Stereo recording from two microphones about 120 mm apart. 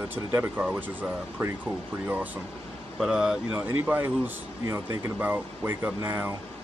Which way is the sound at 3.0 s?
5° right (ahead or behind).